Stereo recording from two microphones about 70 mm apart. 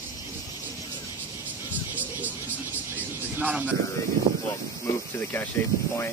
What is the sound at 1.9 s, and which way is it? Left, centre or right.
Music, right.